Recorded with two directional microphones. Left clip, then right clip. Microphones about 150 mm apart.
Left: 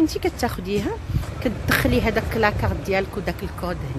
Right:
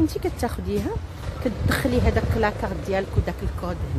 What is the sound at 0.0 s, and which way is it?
A woman's voice, centre (ahead or behind).